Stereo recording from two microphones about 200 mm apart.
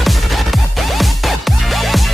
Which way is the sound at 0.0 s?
Centre (ahead or behind).